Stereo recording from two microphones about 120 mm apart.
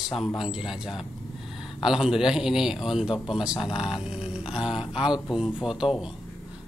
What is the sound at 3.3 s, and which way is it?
Speech, 5° right (ahead or behind).